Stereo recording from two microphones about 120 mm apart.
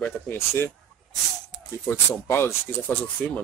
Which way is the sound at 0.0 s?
15° left (ahead or behind).